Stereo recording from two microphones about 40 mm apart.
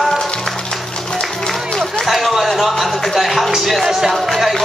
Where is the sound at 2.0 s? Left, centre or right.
Centre.